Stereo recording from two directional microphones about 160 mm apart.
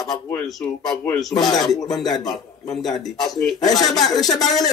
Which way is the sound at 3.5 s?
25° left (ahead or behind).